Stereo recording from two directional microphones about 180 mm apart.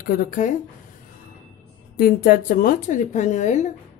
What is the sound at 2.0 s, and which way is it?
Speech, 55° left (ahead or behind).